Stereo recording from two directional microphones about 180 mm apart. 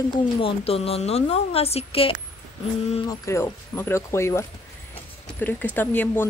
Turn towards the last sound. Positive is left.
turn(degrees=10)  # may be behind; listen again after turning